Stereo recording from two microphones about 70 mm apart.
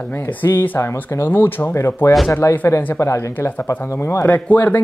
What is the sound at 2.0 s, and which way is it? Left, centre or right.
Speech, left.